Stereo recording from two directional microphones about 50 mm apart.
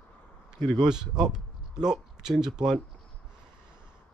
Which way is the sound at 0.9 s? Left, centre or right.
Centre.